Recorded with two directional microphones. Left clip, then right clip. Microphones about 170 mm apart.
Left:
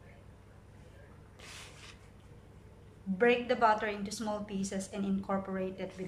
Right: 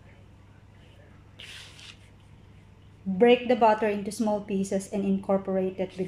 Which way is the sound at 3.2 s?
25° right (ahead or behind).